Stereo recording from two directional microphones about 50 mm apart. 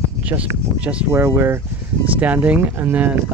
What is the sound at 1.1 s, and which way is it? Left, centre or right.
Speech, right.